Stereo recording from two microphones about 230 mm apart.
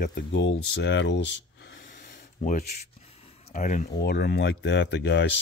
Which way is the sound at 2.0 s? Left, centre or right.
Left.